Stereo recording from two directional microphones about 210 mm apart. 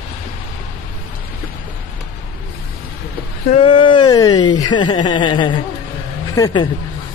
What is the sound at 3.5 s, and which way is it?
A man's voice, 25° left (ahead or behind).